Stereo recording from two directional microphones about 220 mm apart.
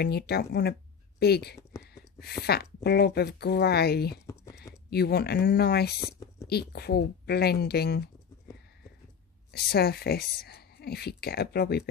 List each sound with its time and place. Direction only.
0.0 s a woman's voice: 45° left (ahead or behind)
2.0 s a sound: 45° left (ahead or behind)
2.4 s a woman's voice: 45° left (ahead or behind)
9.5 s a woman's voice: 45° left (ahead or behind)